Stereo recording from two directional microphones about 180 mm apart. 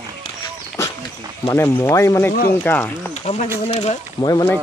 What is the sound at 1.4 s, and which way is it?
Speech, 15° left (ahead or behind).